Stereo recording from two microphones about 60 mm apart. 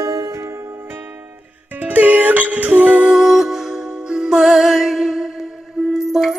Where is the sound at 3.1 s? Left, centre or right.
Centre.